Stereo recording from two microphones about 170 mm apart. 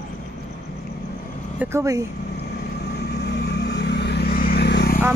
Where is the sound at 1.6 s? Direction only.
20° right (ahead or behind).